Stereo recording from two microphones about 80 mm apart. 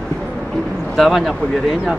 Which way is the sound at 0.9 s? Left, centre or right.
Centre.